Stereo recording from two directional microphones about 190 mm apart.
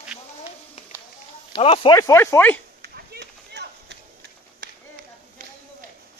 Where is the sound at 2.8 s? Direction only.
55° right (ahead or behind).